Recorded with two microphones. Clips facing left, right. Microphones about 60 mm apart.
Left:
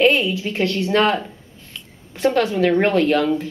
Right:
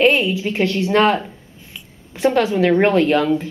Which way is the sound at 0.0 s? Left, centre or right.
Centre.